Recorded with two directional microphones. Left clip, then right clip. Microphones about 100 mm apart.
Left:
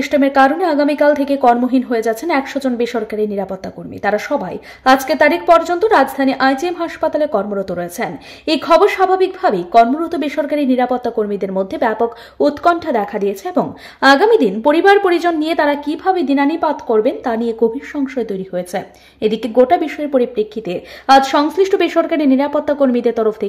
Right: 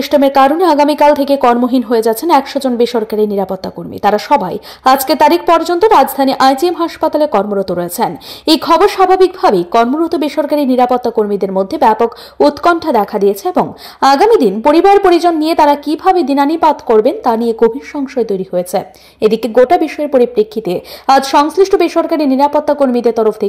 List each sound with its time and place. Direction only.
0.0 s a woman's voice: 25° right (ahead or behind)
3.1 s a woman's voice: 25° right (ahead or behind)
8.5 s a woman's voice: 20° right (ahead or behind)
18.0 s a woman's voice: 10° right (ahead or behind)
21.4 s speech: 45° left (ahead or behind)
21.7 s speech: 10° right (ahead or behind)